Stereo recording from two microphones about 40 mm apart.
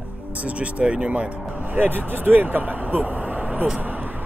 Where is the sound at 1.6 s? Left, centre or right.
Right.